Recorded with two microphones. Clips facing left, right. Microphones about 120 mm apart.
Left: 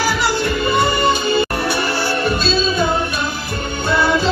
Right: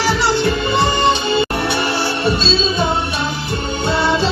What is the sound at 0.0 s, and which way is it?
Music, 25° right (ahead or behind).